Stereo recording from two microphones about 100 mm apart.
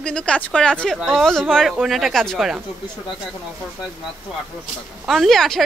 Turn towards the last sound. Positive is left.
turn(degrees=5)  # may be behind; listen again after turning